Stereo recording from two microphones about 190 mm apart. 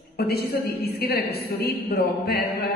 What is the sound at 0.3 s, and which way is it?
A woman's voice, 55° left (ahead or behind).